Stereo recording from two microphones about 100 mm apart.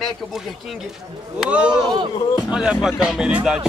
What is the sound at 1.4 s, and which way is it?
Speech, 10° right (ahead or behind).